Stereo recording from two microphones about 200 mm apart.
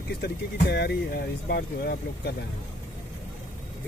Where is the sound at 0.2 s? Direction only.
55° left (ahead or behind).